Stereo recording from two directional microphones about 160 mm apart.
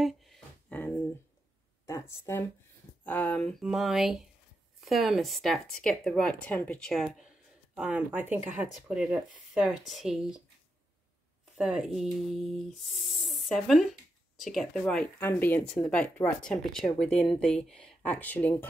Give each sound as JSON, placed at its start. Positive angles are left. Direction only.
{"t": 0.0, "sound": "a sound", "side_deg": 0}
{"t": 1.9, "sound": "speech", "side_deg": 15}
{"t": 3.6, "sound": "speech", "side_deg": 0}
{"t": 11.5, "sound": "speech", "side_deg": -5}